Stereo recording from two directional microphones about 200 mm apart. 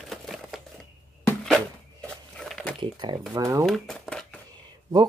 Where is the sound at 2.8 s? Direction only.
20° right (ahead or behind).